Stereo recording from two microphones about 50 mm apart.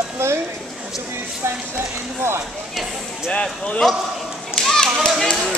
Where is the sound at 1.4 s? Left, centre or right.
Right.